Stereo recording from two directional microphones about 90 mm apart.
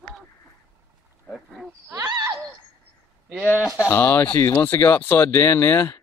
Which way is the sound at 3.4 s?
25° left (ahead or behind).